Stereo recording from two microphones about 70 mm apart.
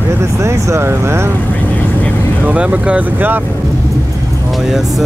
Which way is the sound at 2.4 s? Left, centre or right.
Right.